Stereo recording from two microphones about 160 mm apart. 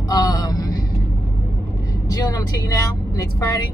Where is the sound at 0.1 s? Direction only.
25° left (ahead or behind).